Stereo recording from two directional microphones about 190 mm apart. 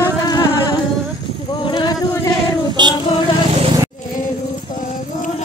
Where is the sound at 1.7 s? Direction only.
25° left (ahead or behind).